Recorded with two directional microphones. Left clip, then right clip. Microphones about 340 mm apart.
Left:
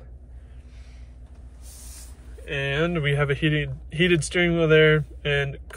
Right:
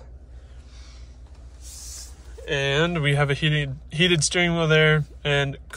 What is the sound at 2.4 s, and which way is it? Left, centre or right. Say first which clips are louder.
Speech: right 3 dB; centre.